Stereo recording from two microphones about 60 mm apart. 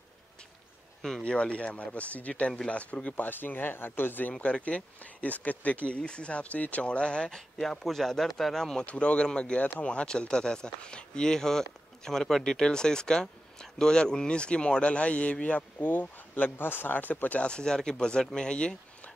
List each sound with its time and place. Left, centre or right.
1.2 s speech: centre; by 4.3 s left
4.3 s speech: left
8.8 s speech: centre
17.5 s speech: centre